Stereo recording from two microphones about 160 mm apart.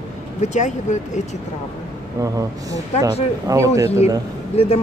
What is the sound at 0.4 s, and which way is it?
Speech, 45° left (ahead or behind).